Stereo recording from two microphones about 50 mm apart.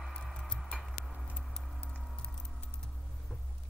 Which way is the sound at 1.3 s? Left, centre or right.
Centre.